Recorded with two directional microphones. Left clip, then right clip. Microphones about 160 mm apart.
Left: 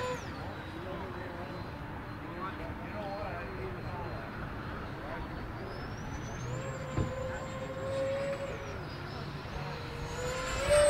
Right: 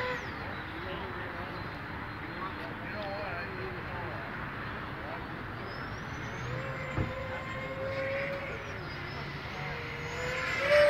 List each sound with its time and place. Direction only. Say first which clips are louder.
7.9 s vehicle: left 1 dB; 30° left (ahead or behind)
10.2 s vehicle: right 3 dB; 20° left (ahead or behind)